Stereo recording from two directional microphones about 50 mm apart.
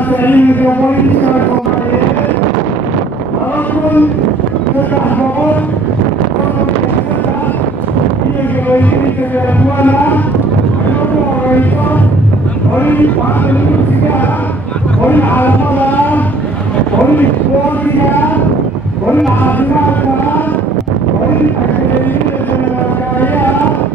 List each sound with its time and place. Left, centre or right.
0.2 s speech: left
9.8 s speech: left
12.7 s speech: left
15.0 s vehicle: left